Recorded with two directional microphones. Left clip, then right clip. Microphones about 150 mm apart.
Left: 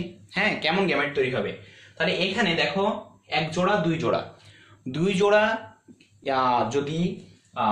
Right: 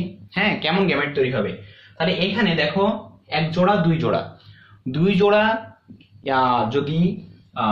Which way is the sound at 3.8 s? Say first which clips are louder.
Right 3 dB; 20° left (ahead or behind).